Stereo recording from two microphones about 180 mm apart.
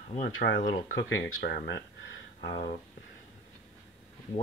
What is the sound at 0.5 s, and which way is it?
Speech, 50° left (ahead or behind).